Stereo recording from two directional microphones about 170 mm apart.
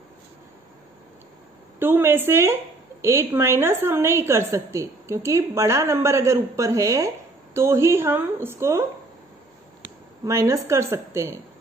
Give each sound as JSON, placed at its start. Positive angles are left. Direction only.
{"t": 1.8, "sound": "speech", "side_deg": -15}
{"t": 10.2, "sound": "speech", "side_deg": -20}